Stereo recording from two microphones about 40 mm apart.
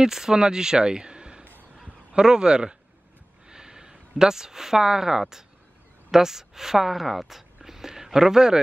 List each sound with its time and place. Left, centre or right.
0.0 s a man's voice: centre
3.4 s snort: centre
4.2 s speech: centre